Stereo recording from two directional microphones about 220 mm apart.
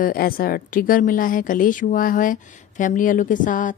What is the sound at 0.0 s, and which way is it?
A woman's voice, 40° left (ahead or behind).